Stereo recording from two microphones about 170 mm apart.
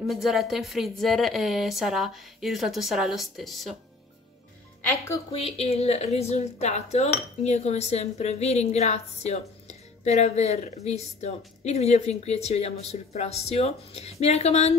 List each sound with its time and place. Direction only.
0.0 s speech: centre (ahead or behind)
5.3 s speech: 35° left (ahead or behind)